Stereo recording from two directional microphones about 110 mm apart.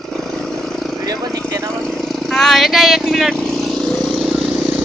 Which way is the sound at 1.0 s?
35° right (ahead or behind).